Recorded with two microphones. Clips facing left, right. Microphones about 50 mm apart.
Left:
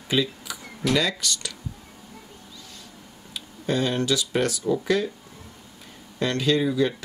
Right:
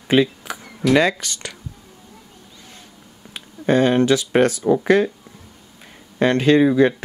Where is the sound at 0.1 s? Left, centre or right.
Right.